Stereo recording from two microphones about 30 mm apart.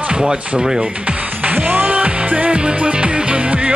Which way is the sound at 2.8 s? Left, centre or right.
Right.